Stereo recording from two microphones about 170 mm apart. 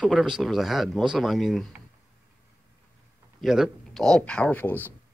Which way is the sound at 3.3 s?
Centre (ahead or behind).